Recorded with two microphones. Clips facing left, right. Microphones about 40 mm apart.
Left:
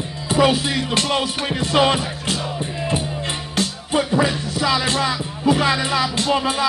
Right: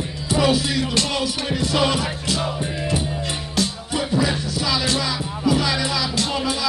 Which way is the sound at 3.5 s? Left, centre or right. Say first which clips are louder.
Left 3 dB; left.